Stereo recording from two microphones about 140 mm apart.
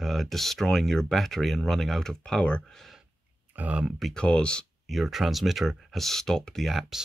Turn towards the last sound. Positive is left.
turn(degrees=0)  # may be behind; listen again after turning